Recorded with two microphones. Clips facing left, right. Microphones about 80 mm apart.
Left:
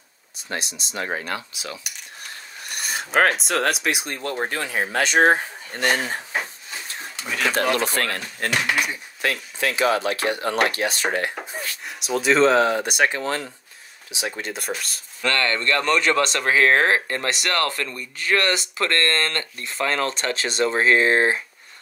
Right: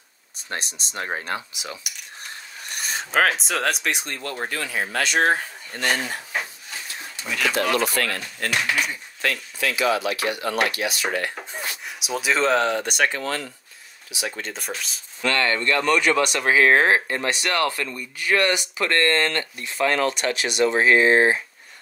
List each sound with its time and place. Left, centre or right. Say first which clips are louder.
0.6 s speech: left 2 dB; right
1.0 s speech: even; right
2.6 s speech: left 1 dB; centre
4.2 s speech: left 3 dB; left
5.9 s speech: left 2 dB; left
7.4 s speech: even; left
8.7 s speech: left 1 dB; centre
9.6 s speech: left 1 dB; left
11.8 s speech: left 5 dB; centre; by 14.4 s left
14.4 s speech: left 2 dB; centre
15.2 s speech: even; centre